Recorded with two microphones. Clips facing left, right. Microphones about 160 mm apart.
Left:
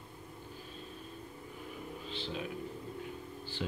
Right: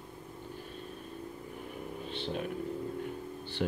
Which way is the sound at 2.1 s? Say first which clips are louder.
Right 4 dB; 55° right (ahead or behind).